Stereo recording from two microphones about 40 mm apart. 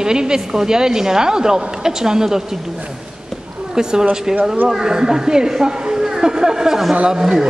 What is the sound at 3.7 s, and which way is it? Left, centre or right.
A woman's voice, centre.